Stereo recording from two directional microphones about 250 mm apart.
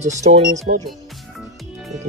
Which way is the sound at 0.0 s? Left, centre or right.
Right.